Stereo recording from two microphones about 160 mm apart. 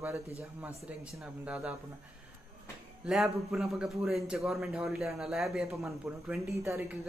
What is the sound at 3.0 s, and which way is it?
Speech, centre (ahead or behind).